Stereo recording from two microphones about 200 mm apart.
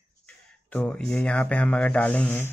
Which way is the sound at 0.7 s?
5° left (ahead or behind).